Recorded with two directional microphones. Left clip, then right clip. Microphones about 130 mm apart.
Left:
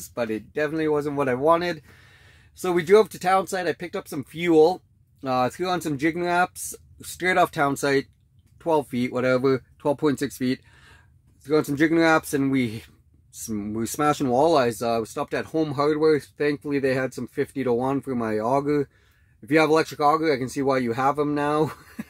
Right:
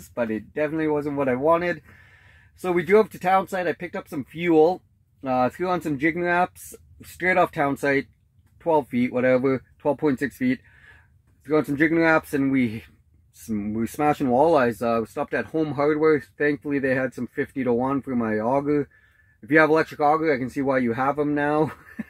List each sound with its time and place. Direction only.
0.1 s speech: 25° left (ahead or behind)
4.5 s speech: 35° left (ahead or behind)